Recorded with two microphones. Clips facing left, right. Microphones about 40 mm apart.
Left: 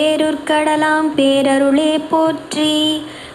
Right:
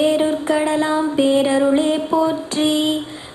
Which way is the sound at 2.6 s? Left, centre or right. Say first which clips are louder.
Left 2 dB; left.